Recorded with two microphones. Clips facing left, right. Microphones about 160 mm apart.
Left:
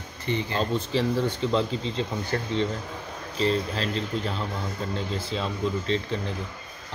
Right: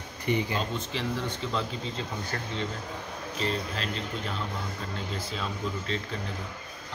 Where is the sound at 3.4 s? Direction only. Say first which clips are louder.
Left 7 dB; 35° left (ahead or behind).